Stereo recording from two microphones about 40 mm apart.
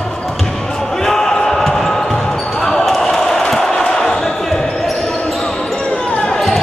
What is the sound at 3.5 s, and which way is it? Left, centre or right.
Crowd, centre.